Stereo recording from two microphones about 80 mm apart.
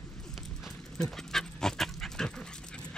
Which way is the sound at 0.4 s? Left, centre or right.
Centre.